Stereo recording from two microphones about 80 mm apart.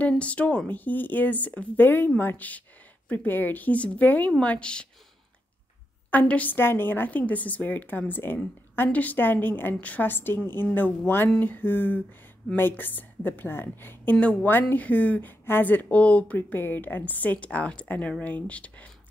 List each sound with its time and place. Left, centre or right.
0.2 s speech: centre
6.0 s speech: centre